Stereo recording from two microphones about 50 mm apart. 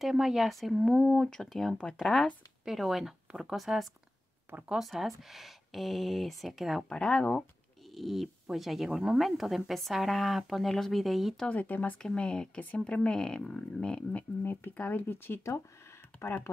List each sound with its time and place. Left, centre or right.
0.0 s speech: centre
6.9 s speech: centre
7.9 s speech: centre
11.4 s speech: left
12.0 s speech: centre
14.4 s speech: left
16.5 s speech: left